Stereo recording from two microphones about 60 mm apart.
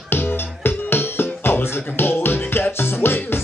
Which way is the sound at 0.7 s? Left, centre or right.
Left.